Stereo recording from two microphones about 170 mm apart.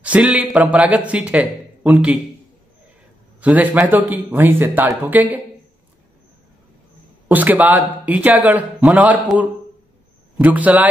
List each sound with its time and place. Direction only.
0.0 s a man's voice: 10° right (ahead or behind)
3.3 s a man's voice: 10° right (ahead or behind)
7.2 s a man's voice: 10° right (ahead or behind)